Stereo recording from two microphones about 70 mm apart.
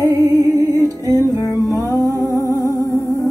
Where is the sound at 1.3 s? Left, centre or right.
Left.